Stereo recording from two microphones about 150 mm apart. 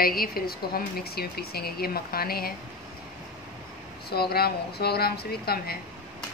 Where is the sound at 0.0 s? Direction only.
80° left.